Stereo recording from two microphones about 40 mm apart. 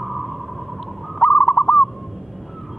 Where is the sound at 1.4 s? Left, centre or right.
Left.